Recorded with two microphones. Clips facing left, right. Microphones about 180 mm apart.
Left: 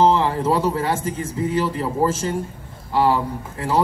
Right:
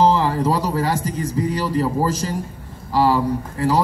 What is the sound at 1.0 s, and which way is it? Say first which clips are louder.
A man's voice: right 2 dB; 35° right (ahead or behind).